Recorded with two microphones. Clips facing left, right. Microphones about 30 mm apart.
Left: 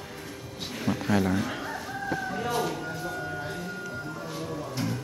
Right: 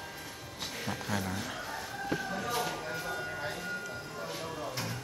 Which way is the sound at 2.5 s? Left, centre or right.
Centre.